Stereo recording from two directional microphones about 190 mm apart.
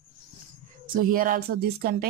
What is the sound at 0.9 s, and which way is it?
Speech, 45° right (ahead or behind).